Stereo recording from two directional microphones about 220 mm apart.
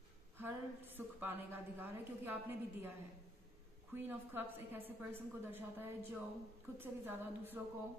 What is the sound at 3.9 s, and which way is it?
A woman's voice, 10° right (ahead or behind).